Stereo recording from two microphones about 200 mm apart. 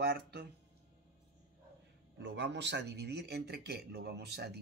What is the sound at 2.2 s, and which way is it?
Speech, 60° right (ahead or behind).